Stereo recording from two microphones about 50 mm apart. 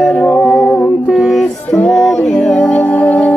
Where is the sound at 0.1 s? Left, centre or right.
Centre.